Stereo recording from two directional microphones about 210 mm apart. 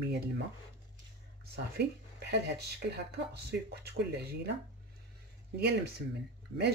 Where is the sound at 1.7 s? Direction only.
50° right (ahead or behind).